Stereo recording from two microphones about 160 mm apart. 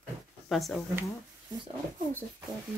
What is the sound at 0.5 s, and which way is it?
Speech, centre (ahead or behind).